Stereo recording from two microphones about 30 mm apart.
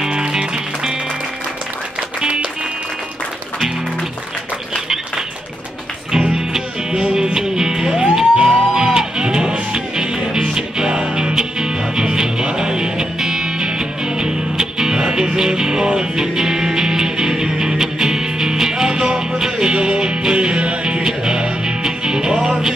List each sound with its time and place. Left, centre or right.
0.1 s music: right
6.9 s music: right